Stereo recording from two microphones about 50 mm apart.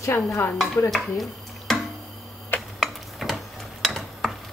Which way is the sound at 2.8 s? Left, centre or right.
Centre.